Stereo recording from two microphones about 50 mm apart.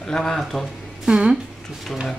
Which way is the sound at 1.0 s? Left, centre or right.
Centre.